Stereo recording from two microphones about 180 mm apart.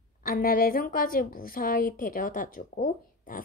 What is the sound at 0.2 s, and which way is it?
A woman's voice, 55° left (ahead or behind).